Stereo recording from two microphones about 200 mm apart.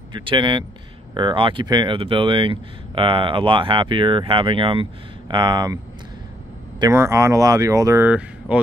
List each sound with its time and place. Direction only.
0.1 s speech: 25° right (ahead or behind)
6.8 s speech: 15° right (ahead or behind)